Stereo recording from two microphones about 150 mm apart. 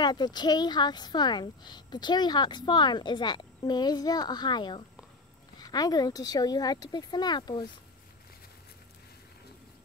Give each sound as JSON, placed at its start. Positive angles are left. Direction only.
{"t": 0.0, "sound": "a woman's voice", "side_deg": 30}